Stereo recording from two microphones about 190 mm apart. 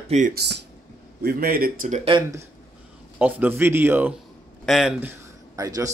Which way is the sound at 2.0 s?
25° right (ahead or behind).